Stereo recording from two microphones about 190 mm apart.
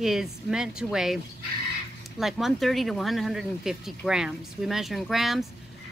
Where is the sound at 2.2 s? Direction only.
Centre (ahead or behind).